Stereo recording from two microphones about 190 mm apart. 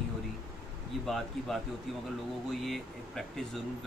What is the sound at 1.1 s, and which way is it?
Speech, centre (ahead or behind).